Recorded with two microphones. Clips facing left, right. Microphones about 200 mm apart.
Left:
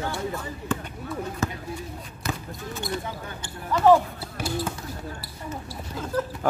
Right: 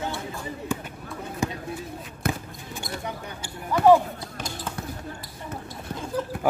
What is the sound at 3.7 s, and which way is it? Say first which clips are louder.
Speech: right 1 dB; 10° right (ahead or behind).